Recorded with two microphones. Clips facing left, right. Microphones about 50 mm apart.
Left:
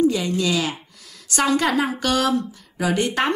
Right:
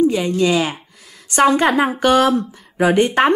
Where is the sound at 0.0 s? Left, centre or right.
Right.